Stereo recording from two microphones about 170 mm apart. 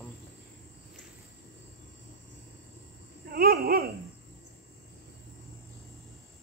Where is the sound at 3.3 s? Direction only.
60° right (ahead or behind).